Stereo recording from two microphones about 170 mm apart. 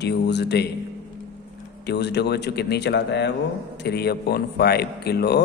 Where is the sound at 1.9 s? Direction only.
85° left.